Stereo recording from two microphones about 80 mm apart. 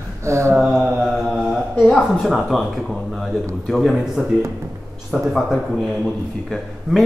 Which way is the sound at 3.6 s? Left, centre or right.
Centre.